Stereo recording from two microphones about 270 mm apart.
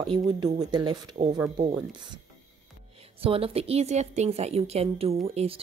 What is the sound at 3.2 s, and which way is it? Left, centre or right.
A woman's voice, right.